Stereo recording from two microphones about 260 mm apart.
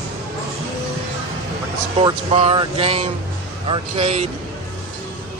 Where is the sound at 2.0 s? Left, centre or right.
Right.